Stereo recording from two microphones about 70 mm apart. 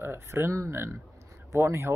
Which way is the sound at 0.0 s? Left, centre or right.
Right.